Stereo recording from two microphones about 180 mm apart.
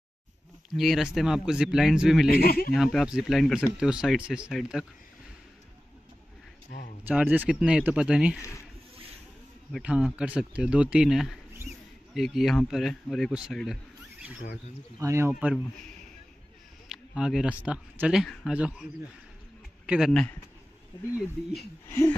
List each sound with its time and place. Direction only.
0.7 s speech: centre (ahead or behind)
2.2 s speech: 55° left (ahead or behind)
2.7 s speech: centre (ahead or behind)
7.1 s speech: 10° right (ahead or behind)
9.7 s speech: 5° right (ahead or behind)
15.0 s speech: 15° right (ahead or behind)
16.9 s speech: 5° right (ahead or behind)
19.9 s speech: centre (ahead or behind)